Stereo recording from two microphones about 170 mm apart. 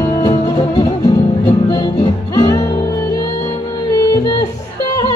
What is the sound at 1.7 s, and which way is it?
Music, 25° left (ahead or behind).